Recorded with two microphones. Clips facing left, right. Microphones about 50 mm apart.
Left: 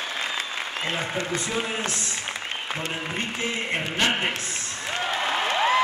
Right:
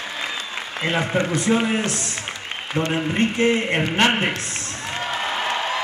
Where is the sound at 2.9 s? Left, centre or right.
Right.